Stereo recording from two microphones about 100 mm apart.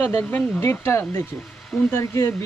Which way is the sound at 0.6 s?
25° left (ahead or behind).